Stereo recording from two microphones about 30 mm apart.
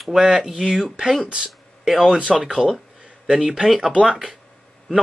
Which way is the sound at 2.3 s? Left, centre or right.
Centre.